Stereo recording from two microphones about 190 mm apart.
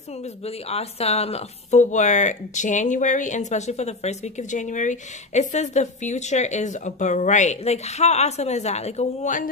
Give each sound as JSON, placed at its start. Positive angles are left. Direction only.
{"t": 0.2, "sound": "speech", "side_deg": 35}